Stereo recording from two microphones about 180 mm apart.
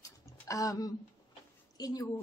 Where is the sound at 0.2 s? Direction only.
20° left (ahead or behind).